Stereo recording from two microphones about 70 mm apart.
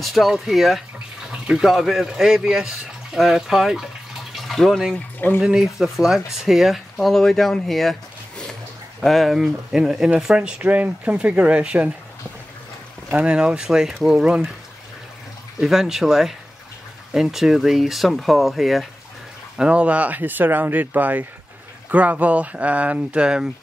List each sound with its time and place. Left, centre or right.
0.0 s speech: centre
4.9 s speech: left
5.4 s speech: centre
13.1 s speech: centre
15.6 s speech: centre
19.5 s speech: centre